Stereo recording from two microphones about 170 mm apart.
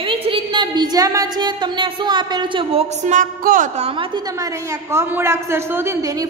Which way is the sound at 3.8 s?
30° right (ahead or behind).